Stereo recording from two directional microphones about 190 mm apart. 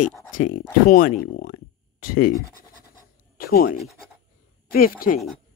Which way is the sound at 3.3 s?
50° left (ahead or behind).